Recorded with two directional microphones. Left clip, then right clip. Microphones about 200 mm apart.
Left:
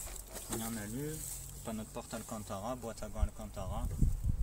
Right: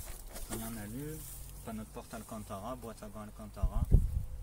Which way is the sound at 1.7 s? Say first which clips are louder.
Left 2 dB; 45° left (ahead or behind).